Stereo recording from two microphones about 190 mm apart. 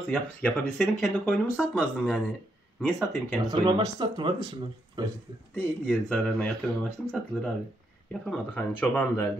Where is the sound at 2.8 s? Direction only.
5° left (ahead or behind).